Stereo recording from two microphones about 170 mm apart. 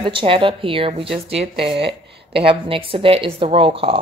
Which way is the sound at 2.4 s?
35° right (ahead or behind).